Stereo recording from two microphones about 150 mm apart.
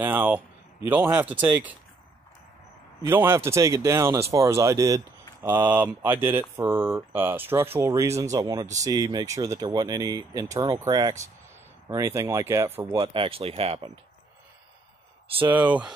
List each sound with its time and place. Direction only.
0.0 s speech: 10° right (ahead or behind)
3.0 s speech: 15° right (ahead or behind)
12.9 s speech: 35° right (ahead or behind)
15.5 s speech: 10° right (ahead or behind)